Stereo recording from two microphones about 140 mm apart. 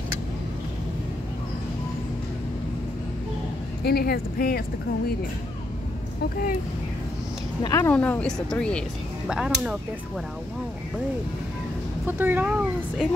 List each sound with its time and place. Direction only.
3.9 s speech: 90° left
7.6 s speech: 25° left (ahead or behind)
7.9 s speech: 10° left (ahead or behind)
12.1 s a child's voice: 15° right (ahead or behind)